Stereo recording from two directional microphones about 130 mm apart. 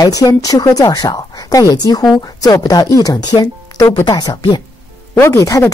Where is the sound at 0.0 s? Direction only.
30° left (ahead or behind).